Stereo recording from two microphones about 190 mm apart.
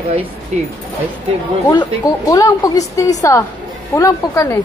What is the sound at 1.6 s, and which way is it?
A woman's voice, 20° left (ahead or behind).